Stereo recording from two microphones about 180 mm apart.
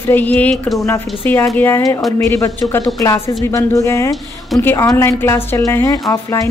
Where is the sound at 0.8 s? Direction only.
10° left (ahead or behind).